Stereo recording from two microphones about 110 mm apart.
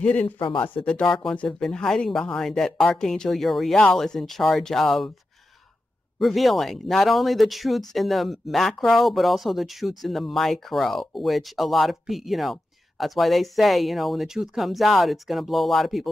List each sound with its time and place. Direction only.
0.0 s speech: 10° left (ahead or behind)
0.4 s speech: 45° left (ahead or behind)
0.8 s speech: 5° left (ahead or behind)
6.1 s speech: centre (ahead or behind)